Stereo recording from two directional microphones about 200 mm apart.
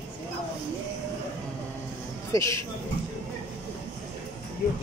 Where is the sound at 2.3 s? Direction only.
15° left (ahead or behind).